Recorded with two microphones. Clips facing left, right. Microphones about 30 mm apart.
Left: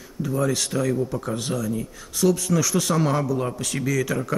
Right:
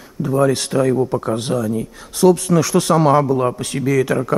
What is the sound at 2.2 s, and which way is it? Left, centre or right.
Speech, right.